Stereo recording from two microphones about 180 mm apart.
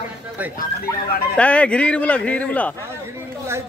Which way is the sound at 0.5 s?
50° left (ahead or behind).